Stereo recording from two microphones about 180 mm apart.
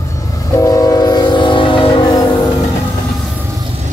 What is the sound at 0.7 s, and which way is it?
Train, 20° left (ahead or behind).